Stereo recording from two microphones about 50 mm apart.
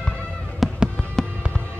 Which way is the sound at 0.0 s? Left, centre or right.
Left.